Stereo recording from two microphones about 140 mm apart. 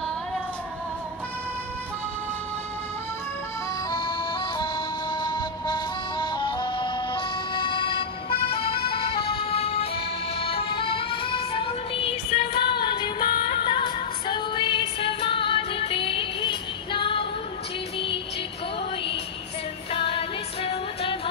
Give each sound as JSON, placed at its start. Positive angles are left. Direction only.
{"t": 3.9, "sound": "music", "side_deg": 35}
{"t": 8.9, "sound": "emergency vehicle", "side_deg": 45}
{"t": 17.9, "sound": "music", "side_deg": 40}
{"t": 19.9, "sound": "music", "side_deg": 40}